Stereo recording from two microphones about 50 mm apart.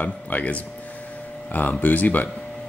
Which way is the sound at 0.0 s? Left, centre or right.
Left.